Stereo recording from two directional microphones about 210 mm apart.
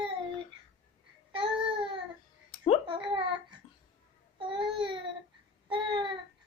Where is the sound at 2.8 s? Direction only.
25° right (ahead or behind).